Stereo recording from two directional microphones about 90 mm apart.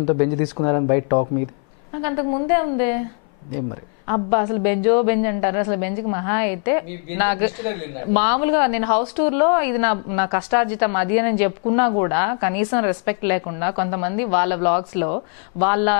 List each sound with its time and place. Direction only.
0.2 s speech: 25° left (ahead or behind)
4.1 s a woman's voice: 20° left (ahead or behind)